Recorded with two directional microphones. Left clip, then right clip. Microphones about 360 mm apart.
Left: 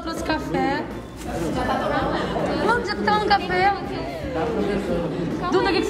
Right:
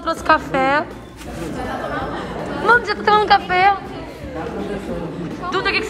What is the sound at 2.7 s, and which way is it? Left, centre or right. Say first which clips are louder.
Speech: right 9 dB; centre.